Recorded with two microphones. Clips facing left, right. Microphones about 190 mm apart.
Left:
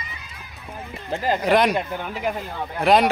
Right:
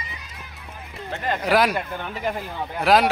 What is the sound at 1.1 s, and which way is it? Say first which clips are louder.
Speech: left 4 dB; 30° left (ahead or behind).